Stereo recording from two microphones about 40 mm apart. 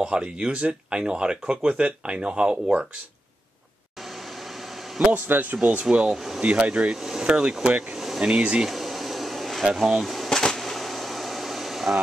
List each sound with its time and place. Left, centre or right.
0.0 s speech: right
5.0 s speech: right
5.3 s speech: right
6.0 s speech: centre
6.4 s speech: right
8.6 s bee: centre
9.8 s speech: centre
10.3 s a sound: centre
10.6 s air conditioning: centre